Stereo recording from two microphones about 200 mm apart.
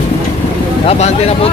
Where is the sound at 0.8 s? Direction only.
30° left (ahead or behind).